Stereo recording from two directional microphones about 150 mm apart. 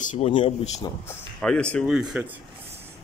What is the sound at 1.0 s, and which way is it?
Speech, 5° left (ahead or behind).